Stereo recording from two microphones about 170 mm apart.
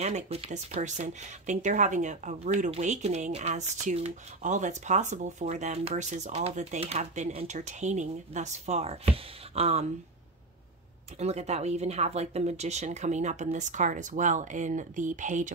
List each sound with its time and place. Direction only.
0.0 s speech: 40° right (ahead or behind)
11.1 s speech: 40° right (ahead or behind)